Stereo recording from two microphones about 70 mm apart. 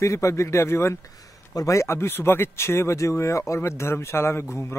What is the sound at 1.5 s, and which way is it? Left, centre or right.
Speech, left.